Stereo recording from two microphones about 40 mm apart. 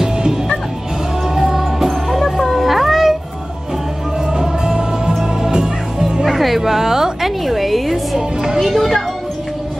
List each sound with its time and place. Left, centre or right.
0.0 s music: centre
1.9 s music: centre
4.3 s music: centre
6.2 s a sound: centre
8.5 s music: centre